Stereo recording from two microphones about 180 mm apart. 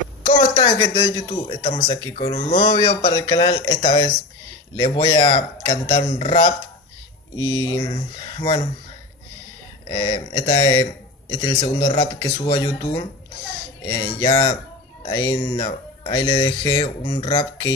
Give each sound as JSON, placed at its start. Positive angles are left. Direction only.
{"t": 0.6, "sound": "a man's voice", "side_deg": 25}
{"t": 9.8, "sound": "a man's voice", "side_deg": 25}